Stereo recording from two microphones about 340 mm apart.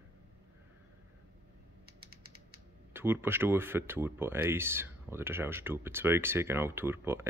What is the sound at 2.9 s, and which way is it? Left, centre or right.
Speech, centre.